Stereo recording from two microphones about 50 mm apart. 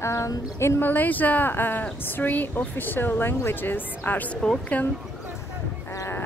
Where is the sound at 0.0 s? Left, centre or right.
Left.